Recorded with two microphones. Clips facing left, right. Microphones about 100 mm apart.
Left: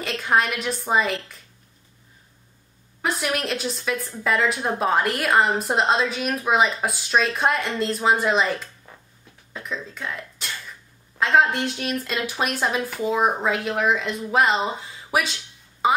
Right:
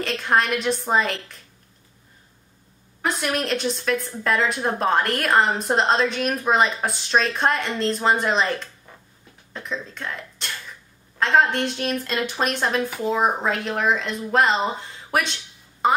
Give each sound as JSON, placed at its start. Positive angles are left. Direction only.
{"t": 0.0, "sound": "a woman's voice", "side_deg": 0}
{"t": 3.0, "sound": "a woman's voice", "side_deg": 0}